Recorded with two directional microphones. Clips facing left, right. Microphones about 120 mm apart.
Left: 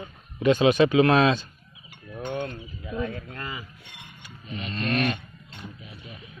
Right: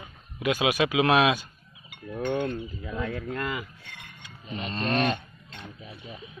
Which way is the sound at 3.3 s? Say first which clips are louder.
Right 5 dB; 85° right.